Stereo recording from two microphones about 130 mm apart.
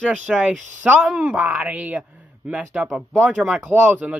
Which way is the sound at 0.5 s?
70° right (ahead or behind).